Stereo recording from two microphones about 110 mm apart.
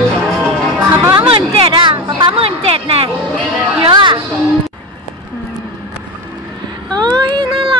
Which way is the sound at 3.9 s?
45° right (ahead or behind).